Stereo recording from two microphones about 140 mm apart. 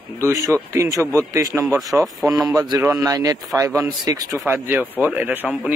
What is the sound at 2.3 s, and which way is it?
A man's voice, 25° right (ahead or behind).